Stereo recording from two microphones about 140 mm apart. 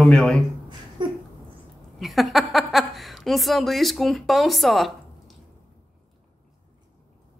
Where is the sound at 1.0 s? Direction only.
35° right (ahead or behind).